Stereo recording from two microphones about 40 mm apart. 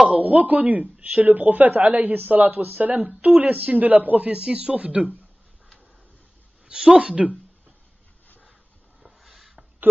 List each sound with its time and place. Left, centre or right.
0.2 s speech: right
4.4 s speech: right
4.7 s speech: right
6.7 s speech: right
9.0 s a sound: centre